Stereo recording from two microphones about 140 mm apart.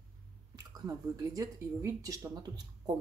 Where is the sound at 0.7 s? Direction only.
25° right (ahead or behind).